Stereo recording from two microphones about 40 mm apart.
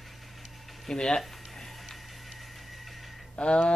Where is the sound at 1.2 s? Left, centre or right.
Centre.